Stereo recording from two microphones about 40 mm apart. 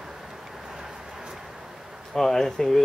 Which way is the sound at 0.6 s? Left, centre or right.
Centre.